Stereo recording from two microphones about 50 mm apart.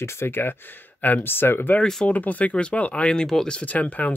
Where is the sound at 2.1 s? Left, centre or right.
Left.